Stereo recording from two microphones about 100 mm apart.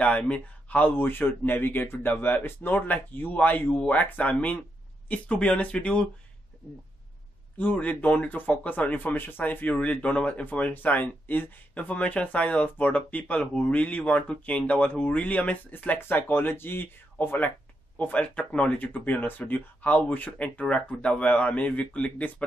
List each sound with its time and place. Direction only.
0.0 s speech: 15° left (ahead or behind)
7.5 s speech: 15° left (ahead or behind)